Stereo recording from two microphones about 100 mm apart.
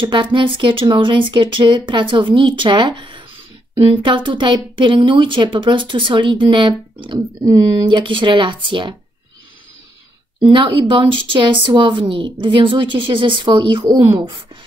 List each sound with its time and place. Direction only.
0.0 s a woman's voice: 55° right (ahead or behind)
10.5 s a woman's voice: 55° right (ahead or behind)